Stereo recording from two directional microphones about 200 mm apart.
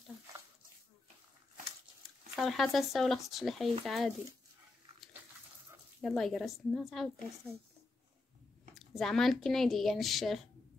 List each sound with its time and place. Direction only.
2.3 s a woman's voice: centre (ahead or behind)
5.9 s a woman's voice: centre (ahead or behind)
8.7 s a woman's voice: centre (ahead or behind)